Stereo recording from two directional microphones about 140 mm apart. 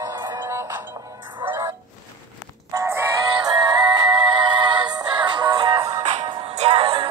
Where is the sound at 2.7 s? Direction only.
25° right (ahead or behind).